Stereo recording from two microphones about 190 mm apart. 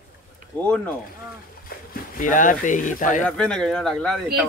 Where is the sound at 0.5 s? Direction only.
10° left (ahead or behind).